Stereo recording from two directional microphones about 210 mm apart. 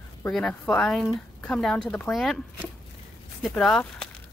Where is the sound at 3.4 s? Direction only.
Centre (ahead or behind).